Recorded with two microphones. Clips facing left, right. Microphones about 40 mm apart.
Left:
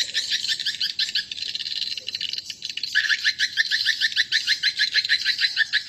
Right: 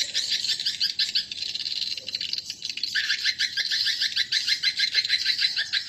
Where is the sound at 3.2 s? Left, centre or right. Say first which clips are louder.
Left 5 dB; left.